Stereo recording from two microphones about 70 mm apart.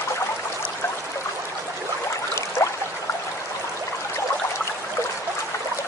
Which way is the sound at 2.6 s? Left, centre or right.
Left.